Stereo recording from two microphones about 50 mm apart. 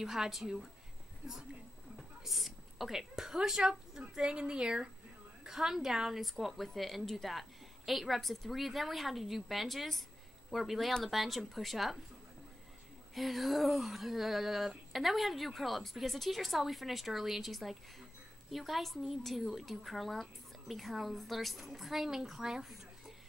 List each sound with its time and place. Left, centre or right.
0.0 s a woman's voice: centre
2.0 s a woman's voice: centre
13.1 s a woman's voice: centre